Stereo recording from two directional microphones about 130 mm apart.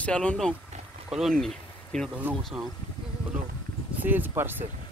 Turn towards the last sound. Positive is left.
turn(degrees=-15)  # may be behind; listen again after turning